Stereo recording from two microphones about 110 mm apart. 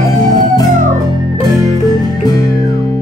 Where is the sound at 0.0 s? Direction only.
35° left (ahead or behind).